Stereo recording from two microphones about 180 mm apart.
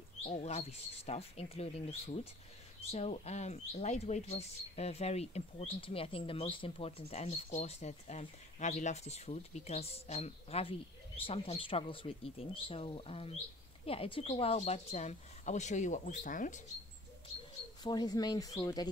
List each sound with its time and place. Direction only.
0.2 s speech: 40° left (ahead or behind)
17.8 s speech: 20° left (ahead or behind)